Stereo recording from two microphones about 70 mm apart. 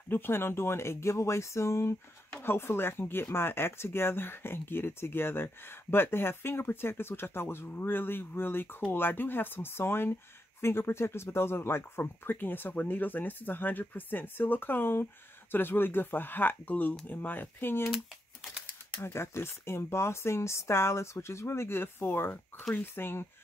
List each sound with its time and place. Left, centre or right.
0.1 s speech: left
17.9 s crumpling: centre
18.9 s speech: left